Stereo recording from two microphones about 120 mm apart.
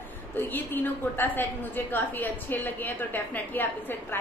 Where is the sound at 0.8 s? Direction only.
15° left (ahead or behind).